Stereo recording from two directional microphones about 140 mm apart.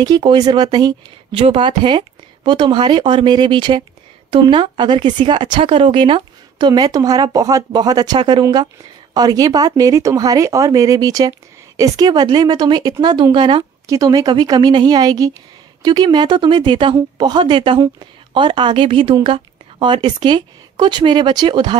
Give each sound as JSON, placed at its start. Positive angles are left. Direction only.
{"t": 0.0, "sound": "speech", "side_deg": -30}
{"t": 1.4, "sound": "speech", "side_deg": -40}
{"t": 13.8, "sound": "speech", "side_deg": -25}